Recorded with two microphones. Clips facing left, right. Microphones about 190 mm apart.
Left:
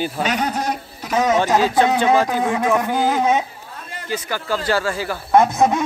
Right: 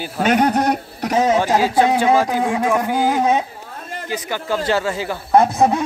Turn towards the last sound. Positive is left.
turn(degrees=-35)  # may be behind; listen again after turning